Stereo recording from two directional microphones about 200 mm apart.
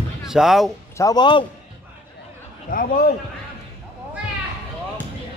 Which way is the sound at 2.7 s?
45° left (ahead or behind).